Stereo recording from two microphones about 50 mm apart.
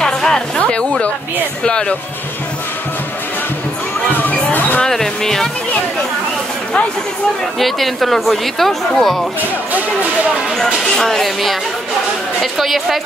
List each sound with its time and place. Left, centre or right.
0.0 s music: centre
0.6 s a sound: left
1.6 s speech: centre
4.1 s a sound: left
4.8 s speech: centre
7.5 s a woman's voice: centre
10.8 s a woman's voice: centre